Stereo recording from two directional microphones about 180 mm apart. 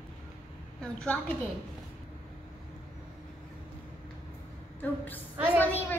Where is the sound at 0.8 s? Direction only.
5° left (ahead or behind).